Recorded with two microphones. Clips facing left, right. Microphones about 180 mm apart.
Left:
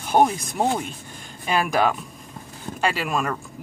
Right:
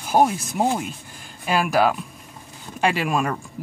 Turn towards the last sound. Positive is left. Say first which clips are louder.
# right 2 dB
turn(degrees=-10)  # may be behind; listen again after turning